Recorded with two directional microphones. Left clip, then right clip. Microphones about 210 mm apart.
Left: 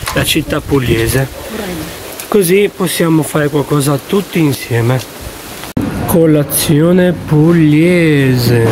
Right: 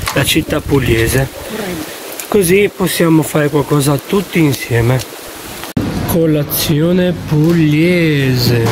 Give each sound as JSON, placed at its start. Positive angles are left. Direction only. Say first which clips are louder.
{"t": 0.1, "sound": "speech", "louder": "even", "side_deg": 10}
{"t": 2.2, "sound": "speech", "louder": "left 1 dB", "side_deg": 10}
{"t": 6.1, "sound": "speech", "louder": "left 4 dB", "side_deg": 15}